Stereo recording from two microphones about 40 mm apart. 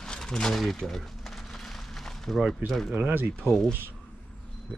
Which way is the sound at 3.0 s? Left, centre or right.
Right.